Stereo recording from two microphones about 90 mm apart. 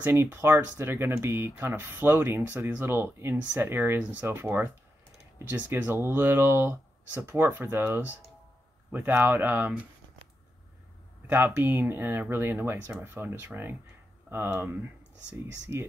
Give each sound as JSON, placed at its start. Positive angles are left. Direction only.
{"t": 0.0, "sound": "speech", "side_deg": -25}
{"t": 11.2, "sound": "speech", "side_deg": -20}